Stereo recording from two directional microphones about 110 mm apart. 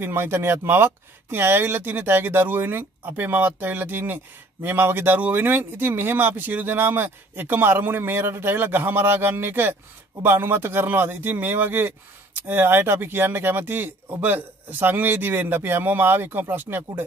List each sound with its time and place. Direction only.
0.0 s speech: 20° right (ahead or behind)